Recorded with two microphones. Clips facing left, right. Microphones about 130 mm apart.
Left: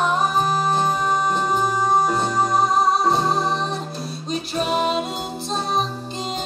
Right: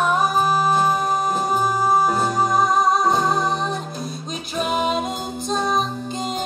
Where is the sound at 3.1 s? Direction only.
30° left (ahead or behind).